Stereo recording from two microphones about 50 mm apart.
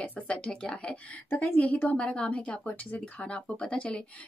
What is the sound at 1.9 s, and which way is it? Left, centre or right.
Speech, centre.